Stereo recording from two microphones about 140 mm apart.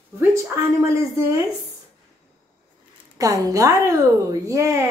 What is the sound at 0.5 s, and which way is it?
Speech, 20° right (ahead or behind).